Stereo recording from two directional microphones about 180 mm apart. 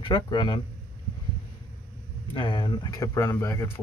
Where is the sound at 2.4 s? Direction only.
25° left (ahead or behind).